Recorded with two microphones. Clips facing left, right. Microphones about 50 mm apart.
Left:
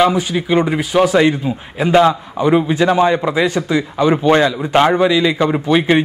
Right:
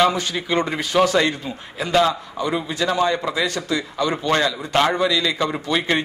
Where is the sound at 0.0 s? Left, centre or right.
Centre.